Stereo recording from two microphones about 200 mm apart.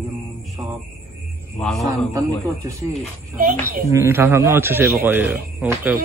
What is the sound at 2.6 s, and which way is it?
Speech, 15° right (ahead or behind).